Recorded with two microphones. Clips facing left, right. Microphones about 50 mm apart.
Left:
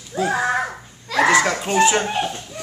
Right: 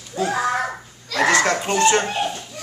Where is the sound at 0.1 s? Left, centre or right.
Centre.